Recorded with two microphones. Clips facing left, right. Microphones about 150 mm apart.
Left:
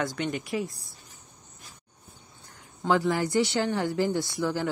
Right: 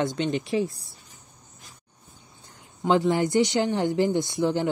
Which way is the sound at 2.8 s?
20° right (ahead or behind).